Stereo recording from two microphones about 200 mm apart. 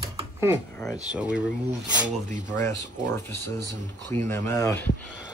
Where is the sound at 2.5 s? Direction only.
10° left (ahead or behind).